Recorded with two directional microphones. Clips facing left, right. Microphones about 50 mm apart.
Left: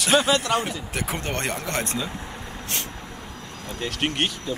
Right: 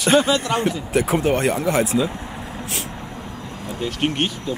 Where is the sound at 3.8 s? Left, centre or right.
Left.